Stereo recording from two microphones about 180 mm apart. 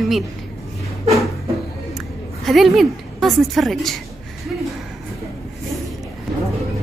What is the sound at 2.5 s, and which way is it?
A woman's voice, centre (ahead or behind).